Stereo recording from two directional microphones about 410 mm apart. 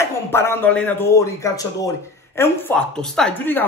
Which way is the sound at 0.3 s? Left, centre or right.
Centre.